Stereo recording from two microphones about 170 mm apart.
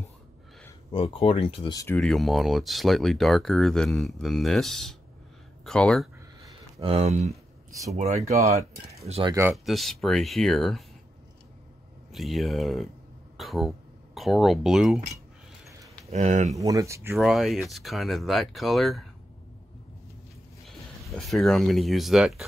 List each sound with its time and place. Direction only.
0.9 s speech: 35° left (ahead or behind)
2.0 s speech: centre (ahead or behind)
6.8 s speech: 35° right (ahead or behind)
9.3 s speech: 15° right (ahead or behind)
9.7 s speech: centre (ahead or behind)
12.1 s speech: centre (ahead or behind)
16.1 s speech: 40° right (ahead or behind)
16.5 s speech: 20° right (ahead or behind)
17.2 s speech: centre (ahead or behind)
20.6 s speech: centre (ahead or behind)